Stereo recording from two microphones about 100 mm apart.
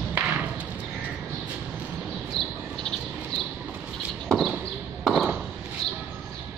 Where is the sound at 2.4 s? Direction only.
5° left (ahead or behind).